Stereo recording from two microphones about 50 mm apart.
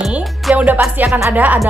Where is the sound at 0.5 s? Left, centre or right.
Right.